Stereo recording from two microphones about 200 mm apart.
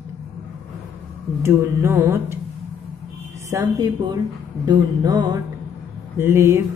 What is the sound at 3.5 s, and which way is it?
Music, 15° right (ahead or behind).